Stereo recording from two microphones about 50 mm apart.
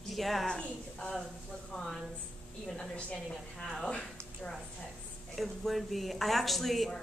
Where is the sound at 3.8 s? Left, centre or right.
Centre.